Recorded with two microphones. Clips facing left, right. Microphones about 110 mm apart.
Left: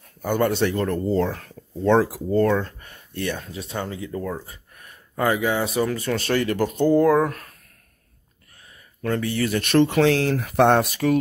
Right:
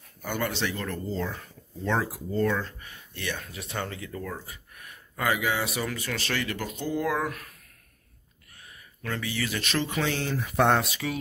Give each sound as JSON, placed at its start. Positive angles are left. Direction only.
{"t": 0.2, "sound": "speech", "side_deg": 45}
{"t": 1.8, "sound": "speech", "side_deg": 45}
{"t": 2.0, "sound": "speech", "side_deg": 75}
{"t": 3.3, "sound": "speech", "side_deg": 25}
{"t": 6.1, "sound": "speech", "side_deg": 45}
{"t": 6.8, "sound": "speech", "side_deg": 55}
{"t": 7.1, "sound": "speech", "side_deg": 40}
{"t": 9.0, "sound": "speech", "side_deg": 45}